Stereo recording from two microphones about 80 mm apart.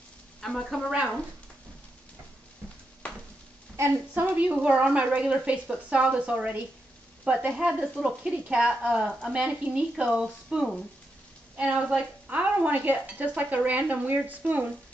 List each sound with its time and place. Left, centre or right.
0.4 s speech: centre
4.2 s speech: centre